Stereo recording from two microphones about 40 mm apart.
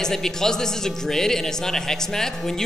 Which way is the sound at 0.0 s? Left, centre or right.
Centre.